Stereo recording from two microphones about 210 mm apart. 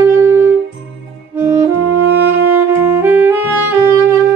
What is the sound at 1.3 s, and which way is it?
Music, 10° right (ahead or behind).